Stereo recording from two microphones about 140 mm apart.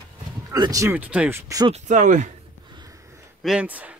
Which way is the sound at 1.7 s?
60° right (ahead or behind).